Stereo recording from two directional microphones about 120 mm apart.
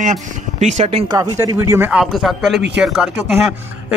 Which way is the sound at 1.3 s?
25° right (ahead or behind).